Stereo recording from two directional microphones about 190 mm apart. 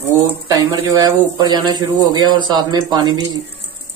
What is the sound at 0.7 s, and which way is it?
Speech, 20° right (ahead or behind).